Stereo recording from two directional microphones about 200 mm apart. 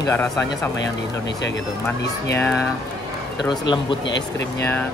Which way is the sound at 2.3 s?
10° left (ahead or behind).